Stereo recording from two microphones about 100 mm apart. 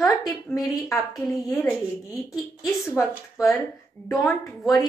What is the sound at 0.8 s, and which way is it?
Speech, 30° left (ahead or behind).